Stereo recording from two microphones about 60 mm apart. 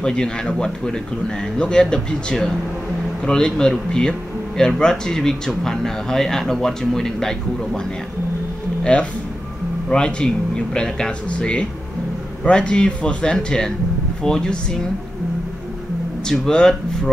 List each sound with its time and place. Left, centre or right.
0.0 s speech: centre
8.9 s speech: centre
16.3 s speech: centre